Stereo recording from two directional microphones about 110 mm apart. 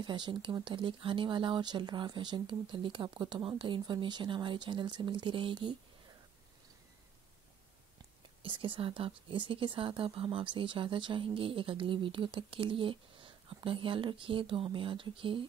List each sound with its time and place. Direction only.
0.0 s a woman's voice: 45° right (ahead or behind)
8.4 s a woman's voice: 50° right (ahead or behind)